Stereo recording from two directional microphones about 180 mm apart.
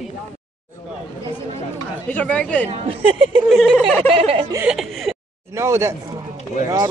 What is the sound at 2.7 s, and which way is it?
Speech, 30° right (ahead or behind).